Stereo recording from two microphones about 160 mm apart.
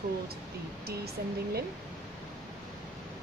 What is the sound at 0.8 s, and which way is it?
Speech, 80° right.